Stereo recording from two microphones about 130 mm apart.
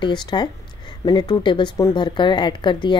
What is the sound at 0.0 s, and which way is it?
A woman's voice, 35° left (ahead or behind).